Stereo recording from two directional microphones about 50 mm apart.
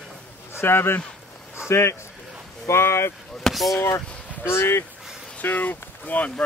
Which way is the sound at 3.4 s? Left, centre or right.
Centre.